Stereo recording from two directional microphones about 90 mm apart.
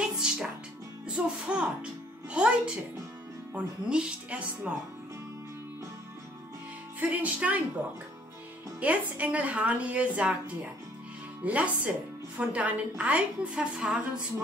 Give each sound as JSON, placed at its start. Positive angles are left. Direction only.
{"t": 0.2, "sound": "music", "side_deg": -10}
{"t": 2.3, "sound": "a woman's voice", "side_deg": -10}
{"t": 7.0, "sound": "a woman's voice", "side_deg": -15}
{"t": 8.7, "sound": "a woman's voice", "side_deg": -15}